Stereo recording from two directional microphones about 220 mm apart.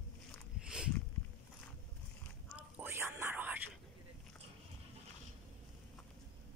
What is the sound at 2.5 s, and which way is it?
Whispering, 10° right (ahead or behind).